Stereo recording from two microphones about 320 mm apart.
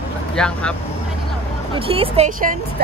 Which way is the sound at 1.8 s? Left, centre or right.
Centre.